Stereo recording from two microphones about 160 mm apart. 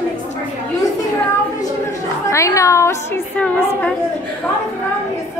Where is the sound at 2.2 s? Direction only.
20° left (ahead or behind).